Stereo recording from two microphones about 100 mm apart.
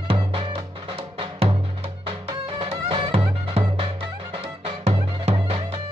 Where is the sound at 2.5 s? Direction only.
65° right (ahead or behind).